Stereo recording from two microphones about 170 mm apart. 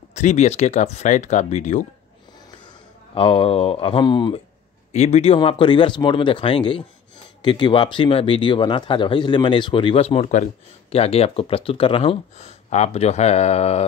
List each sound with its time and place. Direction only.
0.1 s speech: 45° left (ahead or behind)
3.2 s speech: 35° left (ahead or behind)
4.9 s speech: 40° left (ahead or behind)